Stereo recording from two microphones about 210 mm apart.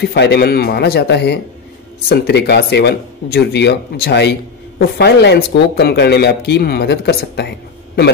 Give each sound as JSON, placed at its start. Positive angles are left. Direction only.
{"t": 0.0, "sound": "speech", "side_deg": 50}